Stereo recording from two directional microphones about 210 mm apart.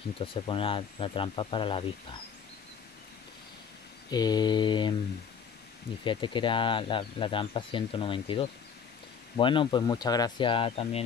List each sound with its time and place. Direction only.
0.2 s speech: 25° left (ahead or behind)
4.1 s speech: 20° left (ahead or behind)
6.0 s speech: 25° left (ahead or behind)